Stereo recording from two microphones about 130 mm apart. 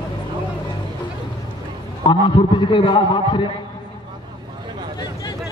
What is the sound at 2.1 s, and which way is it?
A man's voice, 35° left (ahead or behind).